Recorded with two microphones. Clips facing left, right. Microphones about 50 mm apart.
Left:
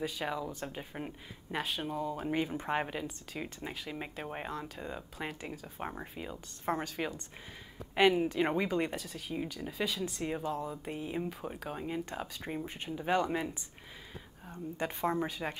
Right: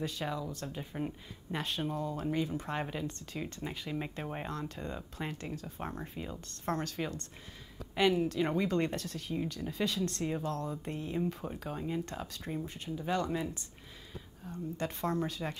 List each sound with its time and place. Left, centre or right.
0.0 s speech: centre
2.3 s speech: left
2.9 s speech: centre
8.6 s speech: centre
12.4 s speech: left